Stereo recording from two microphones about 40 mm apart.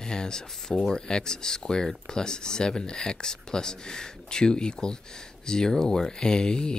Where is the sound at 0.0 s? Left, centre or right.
Centre.